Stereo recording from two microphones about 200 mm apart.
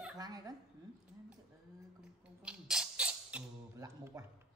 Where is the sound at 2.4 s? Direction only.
5° right (ahead or behind).